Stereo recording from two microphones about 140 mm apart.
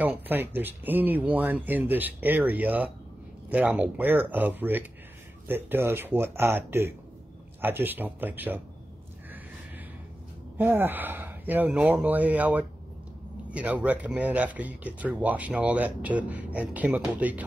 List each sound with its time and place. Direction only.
0.0 s speech: 10° right (ahead or behind)
10.6 s speech: 15° right (ahead or behind)